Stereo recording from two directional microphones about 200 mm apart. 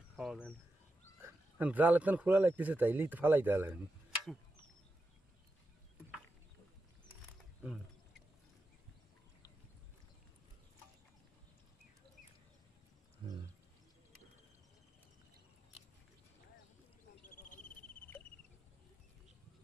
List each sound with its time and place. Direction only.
0.1 s speech: centre (ahead or behind)
17.2 s cricket: 45° left (ahead or behind)